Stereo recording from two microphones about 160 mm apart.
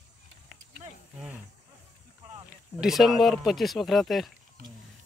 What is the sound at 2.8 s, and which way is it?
Speech, centre (ahead or behind).